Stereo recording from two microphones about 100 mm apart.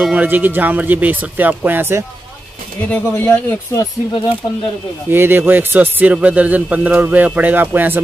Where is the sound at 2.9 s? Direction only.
20° left (ahead or behind).